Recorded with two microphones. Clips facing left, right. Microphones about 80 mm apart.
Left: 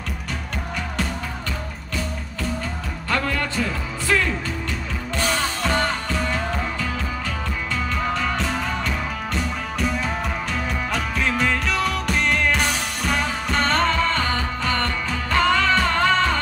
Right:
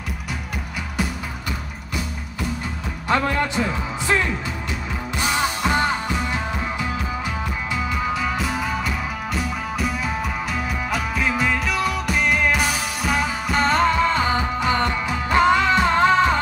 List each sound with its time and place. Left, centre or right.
3.1 s speech: right
5.2 s music: centre